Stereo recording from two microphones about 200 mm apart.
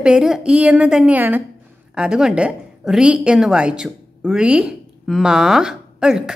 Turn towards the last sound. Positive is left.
turn(degrees=-5)  # may be behind; listen again after turning